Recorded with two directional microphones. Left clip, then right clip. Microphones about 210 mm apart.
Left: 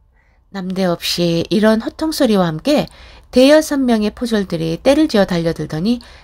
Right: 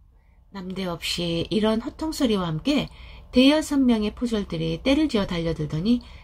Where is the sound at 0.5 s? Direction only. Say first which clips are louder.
Left 12 dB; 50° left (ahead or behind).